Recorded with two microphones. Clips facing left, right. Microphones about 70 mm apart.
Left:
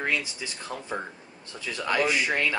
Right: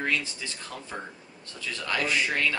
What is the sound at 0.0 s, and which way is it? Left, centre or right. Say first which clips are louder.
Speech: even; centre.